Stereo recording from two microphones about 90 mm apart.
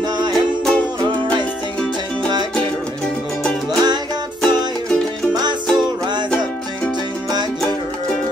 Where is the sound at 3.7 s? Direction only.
50° right (ahead or behind).